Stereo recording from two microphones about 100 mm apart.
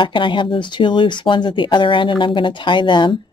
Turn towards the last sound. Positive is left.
turn(degrees=55)  # may be behind; listen again after turning